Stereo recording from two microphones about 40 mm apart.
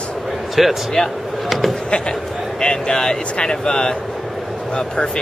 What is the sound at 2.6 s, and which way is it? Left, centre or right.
Speech, left.